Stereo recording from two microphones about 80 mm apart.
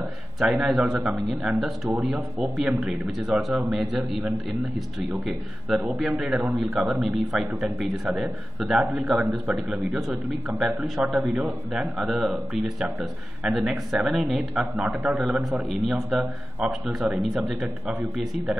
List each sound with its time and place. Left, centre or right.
0.4 s speech: centre
5.7 s a man's voice: centre
11.4 s a man's voice: centre
12.0 s speech: centre